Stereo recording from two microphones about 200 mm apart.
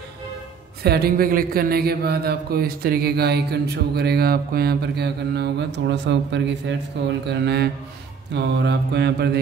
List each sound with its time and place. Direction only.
0.8 s speech: 50° right (ahead or behind)
8.3 s mantra: 60° right (ahead or behind)